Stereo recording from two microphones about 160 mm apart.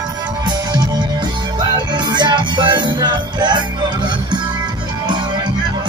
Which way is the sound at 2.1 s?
25° right (ahead or behind).